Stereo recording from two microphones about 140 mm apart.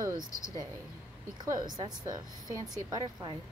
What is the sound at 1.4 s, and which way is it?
A woman's voice, 30° right (ahead or behind).